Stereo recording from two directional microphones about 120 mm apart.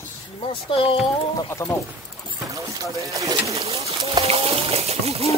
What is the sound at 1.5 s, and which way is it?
Speech, 25° left (ahead or behind).